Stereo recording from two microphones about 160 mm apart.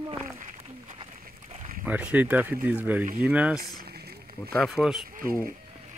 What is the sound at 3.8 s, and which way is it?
Rowboat, 80° right.